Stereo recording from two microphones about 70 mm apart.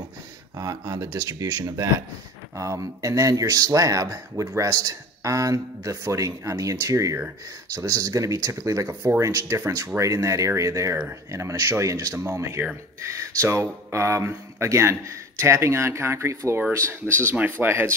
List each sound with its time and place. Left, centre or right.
0.6 s speech: right